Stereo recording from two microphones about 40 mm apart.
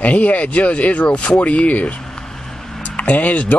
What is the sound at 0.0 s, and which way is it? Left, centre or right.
Speech, left.